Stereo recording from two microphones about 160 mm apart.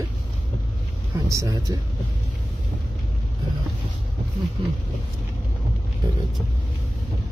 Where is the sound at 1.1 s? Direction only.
20° right (ahead or behind).